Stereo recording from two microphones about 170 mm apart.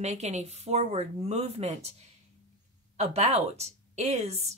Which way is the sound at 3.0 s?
40° right (ahead or behind).